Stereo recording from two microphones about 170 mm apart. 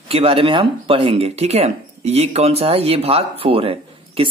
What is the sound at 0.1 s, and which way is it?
Speech, 35° right (ahead or behind).